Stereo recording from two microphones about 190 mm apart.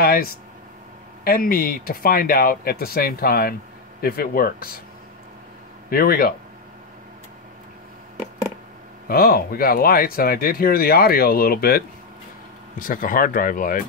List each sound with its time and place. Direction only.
0.0 s speech: 50° left (ahead or behind)
5.9 s speech: 50° left (ahead or behind)
9.0 s speech: 50° left (ahead or behind)